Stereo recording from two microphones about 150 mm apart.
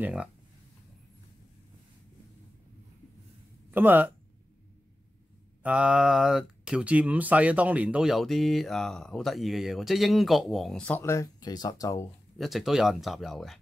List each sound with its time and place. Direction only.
0.0 s speech: 5° right (ahead or behind)
3.7 s speech: 10° right (ahead or behind)
5.6 s speech: 10° right (ahead or behind)
11.0 s speech: 20° left (ahead or behind)
12.4 s speech: centre (ahead or behind)